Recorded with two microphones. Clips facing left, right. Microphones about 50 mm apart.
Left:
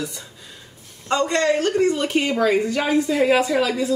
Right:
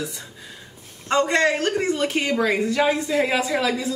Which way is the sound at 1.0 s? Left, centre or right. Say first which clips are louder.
Even; centre.